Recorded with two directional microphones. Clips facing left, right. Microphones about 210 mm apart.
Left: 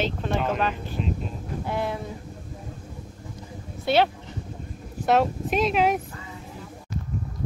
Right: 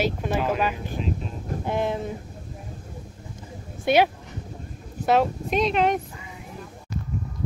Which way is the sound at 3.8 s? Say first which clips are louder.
Right 2 dB; 15° right (ahead or behind).